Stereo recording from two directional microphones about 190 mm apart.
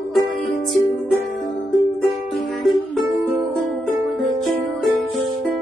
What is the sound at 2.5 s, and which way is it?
Music, centre (ahead or behind).